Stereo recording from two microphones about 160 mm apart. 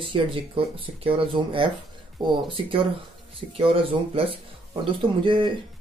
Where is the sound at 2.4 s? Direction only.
35° right (ahead or behind).